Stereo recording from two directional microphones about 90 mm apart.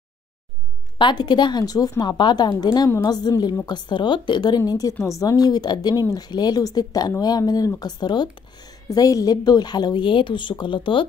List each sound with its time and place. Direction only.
0.9 s speech: 60° left (ahead or behind)
8.8 s speech: 40° left (ahead or behind); by 11.1 s 65° left (ahead or behind)